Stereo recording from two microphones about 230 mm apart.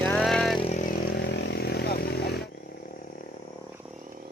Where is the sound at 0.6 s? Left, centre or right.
Left.